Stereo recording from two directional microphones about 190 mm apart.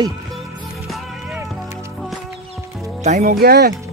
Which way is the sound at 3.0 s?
40° right (ahead or behind).